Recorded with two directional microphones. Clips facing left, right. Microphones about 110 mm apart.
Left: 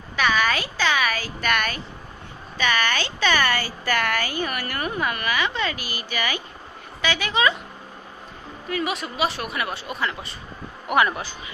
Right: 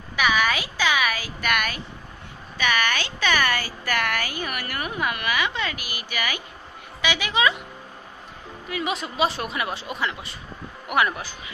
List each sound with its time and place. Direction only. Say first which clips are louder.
0.1 s a sound: even; 10° right (ahead or behind)
2.5 s speech: left 1 dB; 10° right (ahead or behind)
8.8 s speech: right 3 dB; 25° right (ahead or behind)
11.0 s speech: left 2 dB; centre (ahead or behind)